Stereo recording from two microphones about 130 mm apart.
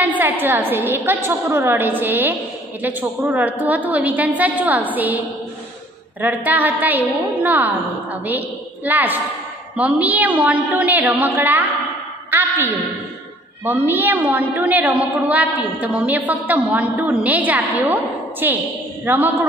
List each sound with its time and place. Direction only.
0.2 s a woman's voice: 15° right (ahead or behind)
6.2 s a woman's voice: 15° right (ahead or behind)
12.3 s a sound: 15° right (ahead or behind)
13.7 s a woman's voice: 15° right (ahead or behind)